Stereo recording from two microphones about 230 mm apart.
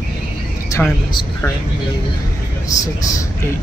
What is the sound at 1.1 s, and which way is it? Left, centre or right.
Speech, centre.